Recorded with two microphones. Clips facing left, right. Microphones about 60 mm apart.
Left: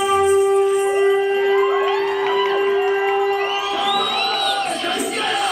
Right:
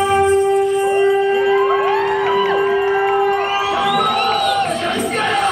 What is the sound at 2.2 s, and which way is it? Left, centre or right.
Music, right.